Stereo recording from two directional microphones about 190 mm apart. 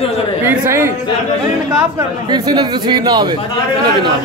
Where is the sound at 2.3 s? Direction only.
20° right (ahead or behind).